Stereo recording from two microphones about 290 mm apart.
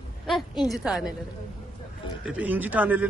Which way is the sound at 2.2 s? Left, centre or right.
Centre.